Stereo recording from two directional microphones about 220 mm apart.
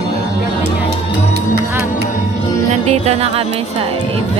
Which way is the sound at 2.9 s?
30° right (ahead or behind).